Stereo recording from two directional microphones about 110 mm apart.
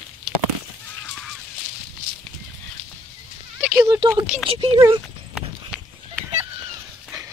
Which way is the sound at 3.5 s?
25° right (ahead or behind).